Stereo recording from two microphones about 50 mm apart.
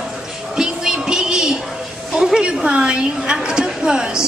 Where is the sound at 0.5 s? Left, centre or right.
Centre.